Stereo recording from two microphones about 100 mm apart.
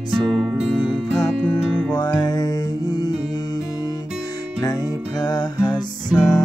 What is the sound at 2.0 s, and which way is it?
Music, 45° left (ahead or behind).